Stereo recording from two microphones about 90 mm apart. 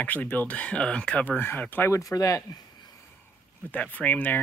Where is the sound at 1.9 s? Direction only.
40° left (ahead or behind).